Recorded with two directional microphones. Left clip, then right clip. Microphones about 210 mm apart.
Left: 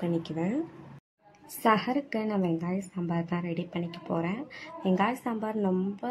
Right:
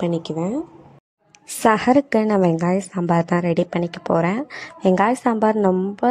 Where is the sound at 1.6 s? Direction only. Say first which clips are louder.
Right 10 dB; 40° right (ahead or behind).